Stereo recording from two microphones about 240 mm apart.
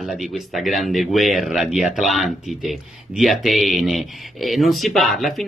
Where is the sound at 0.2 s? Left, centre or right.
Centre.